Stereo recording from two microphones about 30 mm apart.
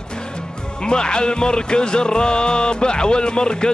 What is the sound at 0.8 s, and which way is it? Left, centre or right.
Speech, left.